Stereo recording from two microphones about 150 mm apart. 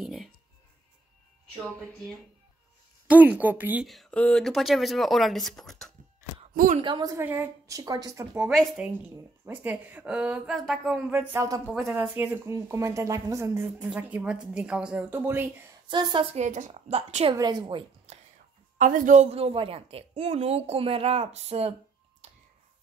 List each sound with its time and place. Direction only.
0.0 s music: centre (ahead or behind)
3.1 s speech: 10° right (ahead or behind)
3.8 s speech: centre (ahead or behind)
6.5 s speech: 70° right (ahead or behind)
6.8 s speech: 30° right (ahead or behind)
7.2 s speech: 15° right (ahead or behind)
8.5 s speech: centre (ahead or behind); by 13.7 s 20° right (ahead or behind)
13.7 s speech: 10° right (ahead or behind)
15.9 s a woman's voice: 30° right (ahead or behind)
16.3 s a woman's voice: 55° right (ahead or behind)
17.3 s a woman's voice: 25° right (ahead or behind)
18.8 s a woman's voice: 60° right (ahead or behind); by 21.7 s 45° right (ahead or behind)